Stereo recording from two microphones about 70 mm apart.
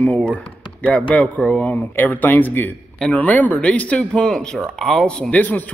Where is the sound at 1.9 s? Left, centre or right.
Left; by 5.3 s centre.